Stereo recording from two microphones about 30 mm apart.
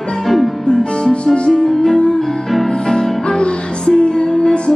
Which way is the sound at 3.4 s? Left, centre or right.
Left.